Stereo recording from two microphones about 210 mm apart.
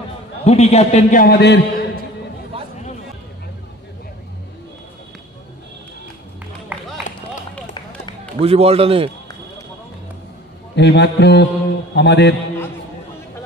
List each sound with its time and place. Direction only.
0.4 s a man's voice: 30° left (ahead or behind)
1.2 s a man's voice: 50° left (ahead or behind)
8.4 s a man's voice: 30° right (ahead or behind)
10.8 s a man's voice: 55° left (ahead or behind)